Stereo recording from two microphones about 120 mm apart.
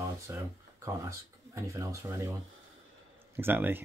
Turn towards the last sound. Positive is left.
turn(degrees=-15)  # may be behind; listen again after turning